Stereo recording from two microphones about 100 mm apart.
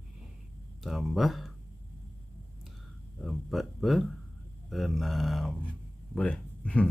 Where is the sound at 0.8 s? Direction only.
Centre (ahead or behind).